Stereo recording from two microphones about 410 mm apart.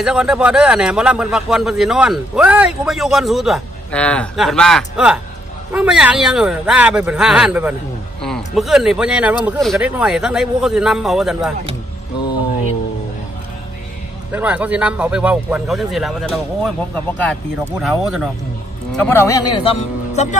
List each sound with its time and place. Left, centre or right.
0.0 s a man's voice: centre
14.3 s a man's voice: centre